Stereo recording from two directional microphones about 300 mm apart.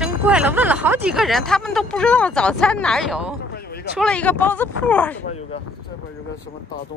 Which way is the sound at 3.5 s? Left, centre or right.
Left.